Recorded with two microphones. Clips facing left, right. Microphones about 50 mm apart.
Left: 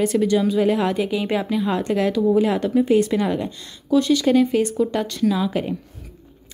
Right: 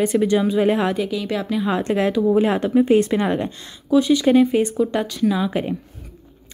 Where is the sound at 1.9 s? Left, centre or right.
Right.